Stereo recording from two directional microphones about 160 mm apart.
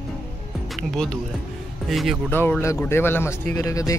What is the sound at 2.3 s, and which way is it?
Speech, 15° left (ahead or behind).